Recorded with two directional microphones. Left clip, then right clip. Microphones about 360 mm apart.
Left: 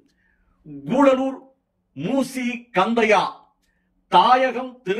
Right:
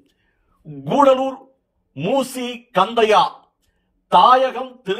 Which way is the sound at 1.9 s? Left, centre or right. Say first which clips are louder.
Right 4 dB; centre.